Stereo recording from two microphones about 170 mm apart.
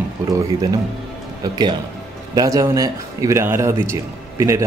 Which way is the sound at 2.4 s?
20° right (ahead or behind).